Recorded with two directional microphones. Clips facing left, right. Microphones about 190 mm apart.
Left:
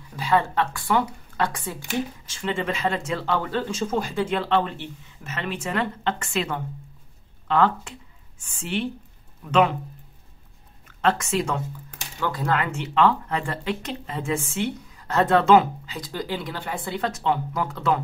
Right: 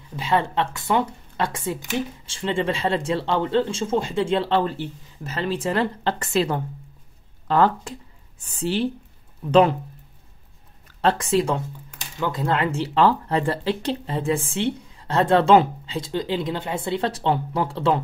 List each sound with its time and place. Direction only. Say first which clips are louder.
0.1 s speech: even; 25° right (ahead or behind)
10.9 s speech: right 2 dB; 35° right (ahead or behind)